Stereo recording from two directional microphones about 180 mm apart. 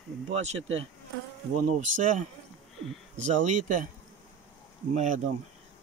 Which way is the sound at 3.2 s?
45° right (ahead or behind).